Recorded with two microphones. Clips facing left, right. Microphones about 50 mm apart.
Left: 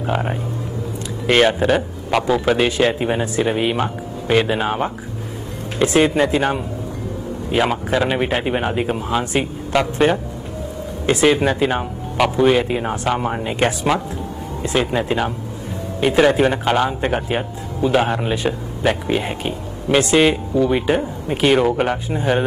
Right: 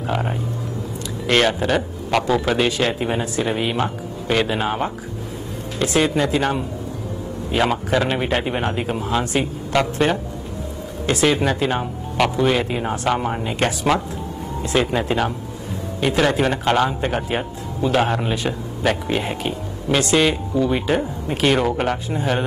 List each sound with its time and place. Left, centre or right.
0.0 s speech: centre
5.8 s speech: left
7.5 s speech: centre
9.2 s speech: left
11.2 s speech: centre